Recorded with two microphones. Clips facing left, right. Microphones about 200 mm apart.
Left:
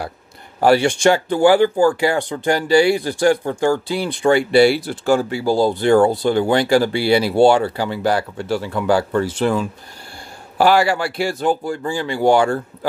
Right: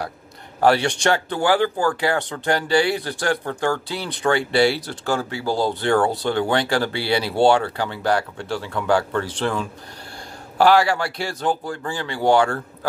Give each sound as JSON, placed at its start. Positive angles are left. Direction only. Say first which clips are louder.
{"t": 0.6, "sound": "a man's voice", "louder": "left 3 dB", "side_deg": 10}